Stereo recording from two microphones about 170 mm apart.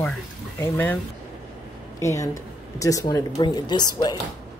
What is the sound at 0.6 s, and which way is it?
Speech, 15° left (ahead or behind).